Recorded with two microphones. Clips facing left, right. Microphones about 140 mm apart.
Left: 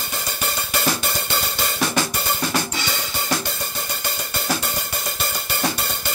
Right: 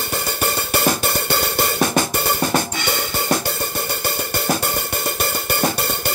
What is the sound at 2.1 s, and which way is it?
Cymbal, 55° right (ahead or behind).